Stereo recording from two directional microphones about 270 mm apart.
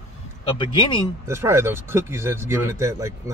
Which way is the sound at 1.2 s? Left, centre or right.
Centre.